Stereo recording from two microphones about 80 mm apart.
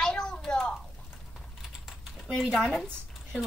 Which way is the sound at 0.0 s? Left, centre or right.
Centre.